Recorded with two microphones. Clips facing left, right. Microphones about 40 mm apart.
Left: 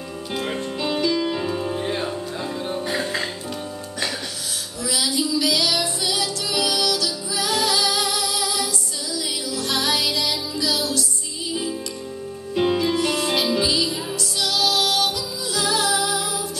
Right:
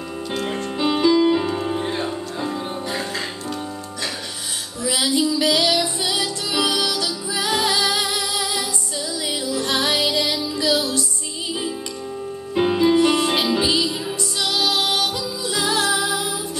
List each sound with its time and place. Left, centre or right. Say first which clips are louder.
0.7 s music: right 6 dB; centre
1.8 s music: right 1 dB; centre
4.9 s music: right 3 dB; right
12.5 s music: right 4 dB; centre